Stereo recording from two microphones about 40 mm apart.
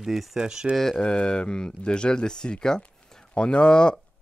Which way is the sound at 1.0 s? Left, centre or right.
Left.